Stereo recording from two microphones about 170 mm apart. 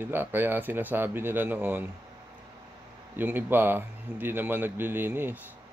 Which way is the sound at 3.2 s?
10° right (ahead or behind).